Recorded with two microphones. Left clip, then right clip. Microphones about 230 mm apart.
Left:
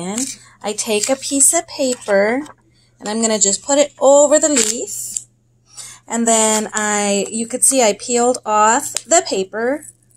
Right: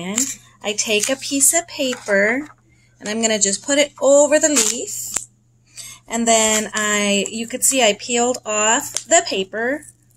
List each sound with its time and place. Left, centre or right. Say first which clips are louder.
0.6 s speech: even; centre